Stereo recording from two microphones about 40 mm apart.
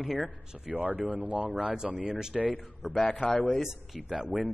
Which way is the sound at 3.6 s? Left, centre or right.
Centre.